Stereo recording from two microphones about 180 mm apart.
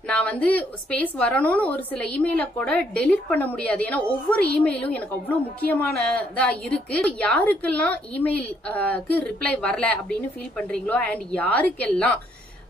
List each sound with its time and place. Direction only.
0.1 s a woman's voice: 5° left (ahead or behind)